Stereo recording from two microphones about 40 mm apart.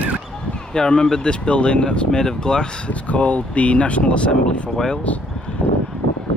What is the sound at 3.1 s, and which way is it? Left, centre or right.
Speech, left.